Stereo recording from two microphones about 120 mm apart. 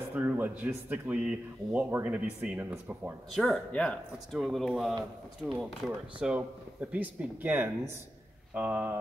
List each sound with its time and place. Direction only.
0.1 s speech: 15° right (ahead or behind)
3.3 s speech: centre (ahead or behind)